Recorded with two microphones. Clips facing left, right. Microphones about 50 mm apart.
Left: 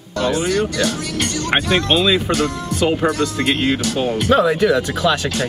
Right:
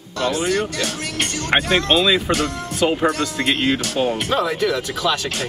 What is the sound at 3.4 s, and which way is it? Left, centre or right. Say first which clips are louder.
Speech: left 1 dB; centre.